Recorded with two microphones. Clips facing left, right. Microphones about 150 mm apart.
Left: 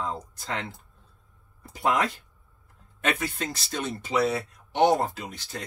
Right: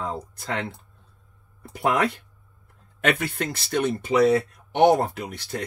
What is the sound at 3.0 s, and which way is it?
Speech, 60° right (ahead or behind).